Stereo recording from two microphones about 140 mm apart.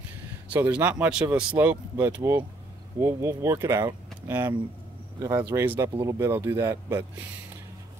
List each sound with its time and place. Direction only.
0.5 s speech: 10° right (ahead or behind)